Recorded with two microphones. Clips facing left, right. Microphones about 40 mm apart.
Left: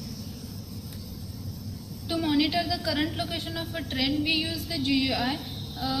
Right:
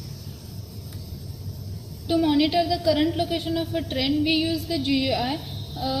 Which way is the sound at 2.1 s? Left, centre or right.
Centre.